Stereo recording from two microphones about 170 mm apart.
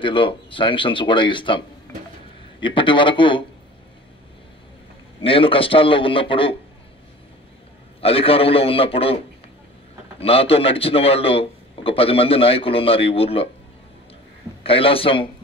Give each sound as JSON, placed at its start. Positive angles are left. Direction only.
{"t": 0.0, "sound": "speech", "side_deg": 30}
{"t": 2.6, "sound": "speech", "side_deg": 30}
{"t": 5.2, "sound": "a man's voice", "side_deg": 30}
{"t": 8.0, "sound": "a man's voice", "side_deg": 35}
{"t": 14.6, "sound": "a man's voice", "side_deg": 35}